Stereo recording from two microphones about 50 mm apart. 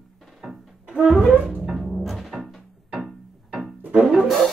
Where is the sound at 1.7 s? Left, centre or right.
Centre.